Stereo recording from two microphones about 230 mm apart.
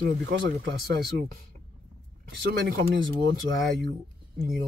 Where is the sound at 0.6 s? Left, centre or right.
Right.